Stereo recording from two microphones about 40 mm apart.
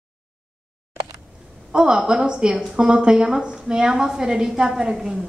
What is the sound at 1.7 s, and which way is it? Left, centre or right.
A woman's voice, right.